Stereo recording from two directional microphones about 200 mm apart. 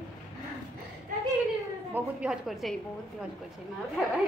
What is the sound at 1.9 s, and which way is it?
Speech, 10° right (ahead or behind).